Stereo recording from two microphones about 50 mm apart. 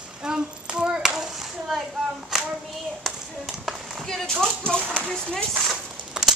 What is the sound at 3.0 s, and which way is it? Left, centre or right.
Tap, centre.